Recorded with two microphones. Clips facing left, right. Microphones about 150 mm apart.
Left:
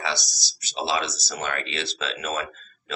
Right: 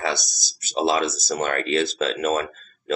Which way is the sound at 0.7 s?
45° right (ahead or behind).